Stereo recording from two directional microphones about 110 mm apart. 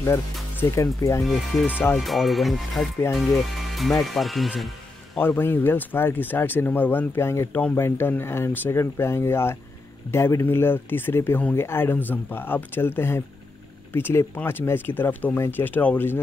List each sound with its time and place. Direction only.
0.0 s speech: 25° left (ahead or behind)
1.2 s speech: centre (ahead or behind)
5.2 s speech: 20° left (ahead or behind)